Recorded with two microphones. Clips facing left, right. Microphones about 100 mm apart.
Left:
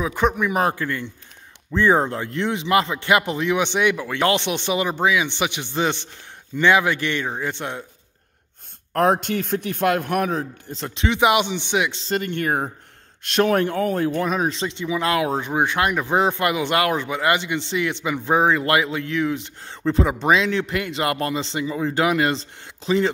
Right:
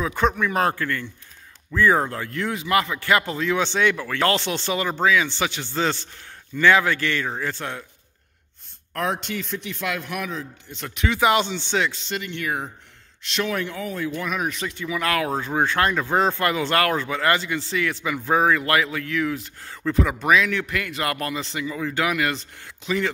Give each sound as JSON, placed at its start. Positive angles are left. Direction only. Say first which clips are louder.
{"t": 0.0, "sound": "a man's voice", "louder": "left 1 dB", "side_deg": 15}
{"t": 8.9, "sound": "a man's voice", "louder": "left 7 dB", "side_deg": 45}
{"t": 10.8, "sound": "a man's voice", "louder": "left 2 dB", "side_deg": 25}
{"t": 11.9, "sound": "a man's voice", "louder": "left 6 dB", "side_deg": 35}
{"t": 14.2, "sound": "speech", "louder": "left 4 dB", "side_deg": 30}